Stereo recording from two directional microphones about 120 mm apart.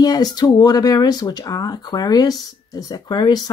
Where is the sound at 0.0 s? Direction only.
35° left (ahead or behind).